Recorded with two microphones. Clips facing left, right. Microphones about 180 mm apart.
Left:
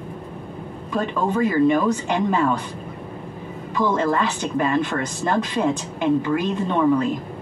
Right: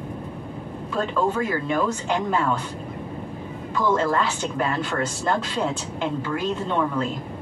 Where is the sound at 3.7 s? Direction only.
15° left (ahead or behind).